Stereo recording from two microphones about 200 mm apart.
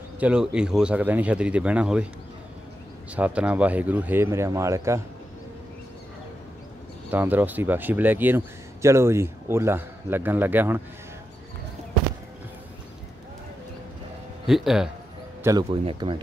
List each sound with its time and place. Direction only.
0.2 s speech: 5° right (ahead or behind)
3.2 s speech: 5° right (ahead or behind)
7.1 s speech: 10° right (ahead or behind)
14.4 s speech: centre (ahead or behind)
15.4 s speech: 20° right (ahead or behind)